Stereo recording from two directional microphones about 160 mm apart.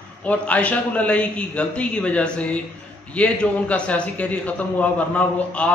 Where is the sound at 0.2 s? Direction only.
10° left (ahead or behind).